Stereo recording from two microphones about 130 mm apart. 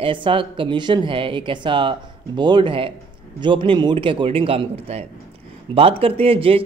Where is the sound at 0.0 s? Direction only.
40° right (ahead or behind).